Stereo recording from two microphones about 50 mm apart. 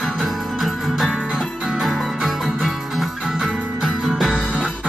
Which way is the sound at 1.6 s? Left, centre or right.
Centre.